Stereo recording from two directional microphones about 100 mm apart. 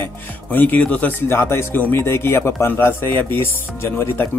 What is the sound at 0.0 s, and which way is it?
Speech, 20° left (ahead or behind).